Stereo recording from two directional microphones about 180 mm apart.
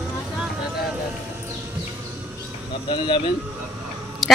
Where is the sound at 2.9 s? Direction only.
30° left (ahead or behind).